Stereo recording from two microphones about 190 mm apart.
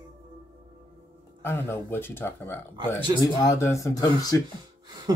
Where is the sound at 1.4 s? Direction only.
10° left (ahead or behind).